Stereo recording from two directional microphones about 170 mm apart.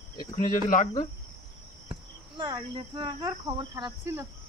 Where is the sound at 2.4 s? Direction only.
25° right (ahead or behind).